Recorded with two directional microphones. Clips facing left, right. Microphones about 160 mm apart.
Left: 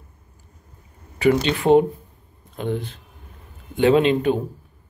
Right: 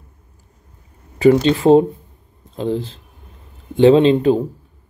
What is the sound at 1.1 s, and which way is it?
Speech, 30° right (ahead or behind).